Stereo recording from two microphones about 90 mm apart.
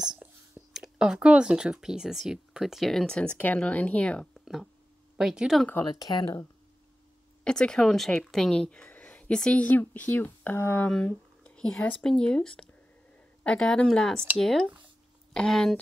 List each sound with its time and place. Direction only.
0.0 s a sound: 5° right (ahead or behind)
0.7 s speech: 5° right (ahead or behind); by 4.3 s 15° left (ahead or behind)
4.3 s a sound: centre (ahead or behind)
5.1 s speech: 10° right (ahead or behind)
5.9 s speech: 45° left (ahead or behind)
7.4 s a woman's voice: 10° left (ahead or behind)
10.9 s a woman's voice: 10° left (ahead or behind)